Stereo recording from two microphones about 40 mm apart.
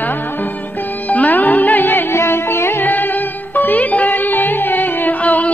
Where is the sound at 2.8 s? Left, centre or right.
Left.